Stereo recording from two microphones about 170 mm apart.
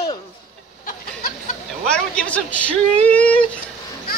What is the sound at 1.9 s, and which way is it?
A man's voice, 5° left (ahead or behind).